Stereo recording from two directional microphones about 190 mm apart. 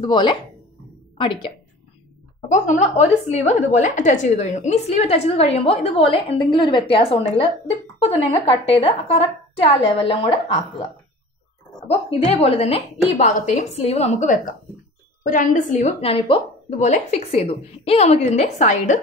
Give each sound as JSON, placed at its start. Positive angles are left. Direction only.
{"t": 0.0, "sound": "a woman's voice", "side_deg": 25}
{"t": 2.5, "sound": "a woman's voice", "side_deg": 40}
{"t": 11.9, "sound": "a woman's voice", "side_deg": 30}